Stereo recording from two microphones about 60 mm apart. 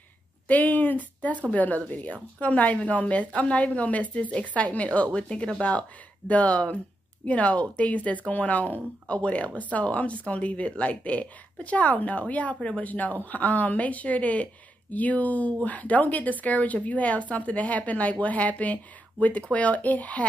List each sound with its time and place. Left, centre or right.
0.5 s speech: left